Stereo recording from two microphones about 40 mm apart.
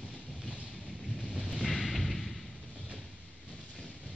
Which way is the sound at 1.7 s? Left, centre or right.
Centre.